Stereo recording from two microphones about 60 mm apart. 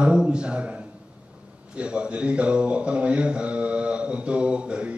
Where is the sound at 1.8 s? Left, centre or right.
Centre.